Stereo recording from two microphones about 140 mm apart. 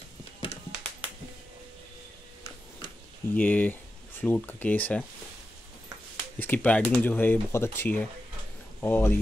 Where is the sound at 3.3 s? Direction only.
10° left (ahead or behind).